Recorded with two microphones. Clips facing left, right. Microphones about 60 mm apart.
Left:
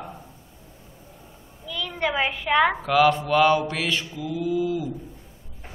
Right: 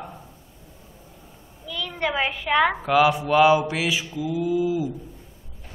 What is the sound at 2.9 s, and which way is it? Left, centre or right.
A man's voice, centre.